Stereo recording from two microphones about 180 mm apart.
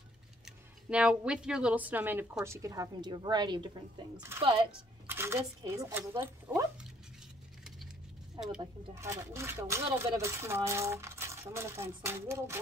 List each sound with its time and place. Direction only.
0.5 s a woman's voice: 5° right (ahead or behind); by 4.6 s 30° right (ahead or behind)
5.0 s a sound: 15° right (ahead or behind)
5.8 s speech: 15° right (ahead or behind)
8.4 s a woman's voice: 25° right (ahead or behind)